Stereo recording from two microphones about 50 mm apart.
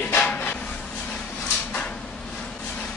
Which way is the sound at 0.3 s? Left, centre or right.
Left.